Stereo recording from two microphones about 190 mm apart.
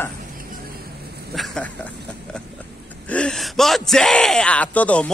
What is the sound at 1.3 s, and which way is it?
Speech, centre (ahead or behind).